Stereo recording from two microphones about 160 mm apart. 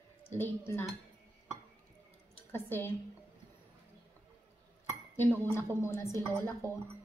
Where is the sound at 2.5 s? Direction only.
15° left (ahead or behind).